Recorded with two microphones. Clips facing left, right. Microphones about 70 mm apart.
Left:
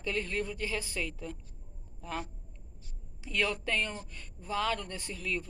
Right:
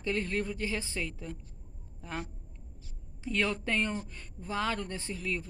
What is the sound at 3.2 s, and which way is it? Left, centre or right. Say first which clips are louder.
Speech: right 1 dB; right.